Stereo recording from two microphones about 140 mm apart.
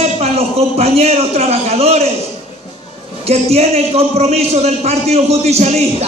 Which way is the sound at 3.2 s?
50° right (ahead or behind).